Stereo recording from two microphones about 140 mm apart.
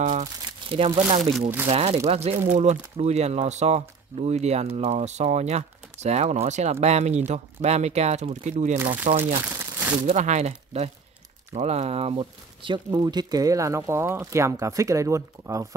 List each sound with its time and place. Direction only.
0.0 s speech: 65° right (ahead or behind)
0.7 s speech: 45° right (ahead or behind)
9.4 s crumpling: 15° right (ahead or behind)
10.0 s speech: 60° right (ahead or behind); by 15.7 s 20° right (ahead or behind)